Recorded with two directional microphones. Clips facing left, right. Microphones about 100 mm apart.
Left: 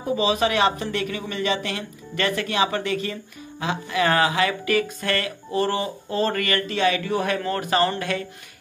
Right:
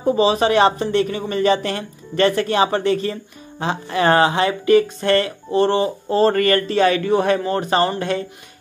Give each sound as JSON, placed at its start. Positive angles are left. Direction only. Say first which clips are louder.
{"t": 0.0, "sound": "speech", "louder": "right 5 dB", "side_deg": -35}